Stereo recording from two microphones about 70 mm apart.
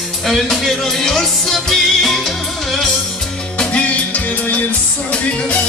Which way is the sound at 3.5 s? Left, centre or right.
Centre.